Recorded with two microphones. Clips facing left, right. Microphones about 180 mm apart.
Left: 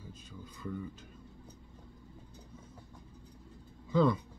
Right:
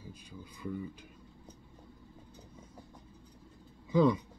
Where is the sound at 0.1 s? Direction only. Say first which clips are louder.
Even; 10° right (ahead or behind).